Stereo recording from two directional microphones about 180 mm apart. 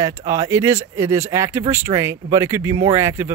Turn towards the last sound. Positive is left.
turn(degrees=-15)  # may be behind; listen again after turning